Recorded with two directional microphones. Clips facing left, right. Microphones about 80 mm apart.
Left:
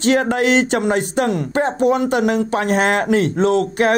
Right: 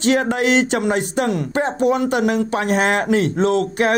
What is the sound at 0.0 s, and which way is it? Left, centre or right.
Speech, left.